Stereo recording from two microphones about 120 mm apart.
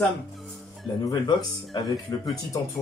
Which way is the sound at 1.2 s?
40° left (ahead or behind).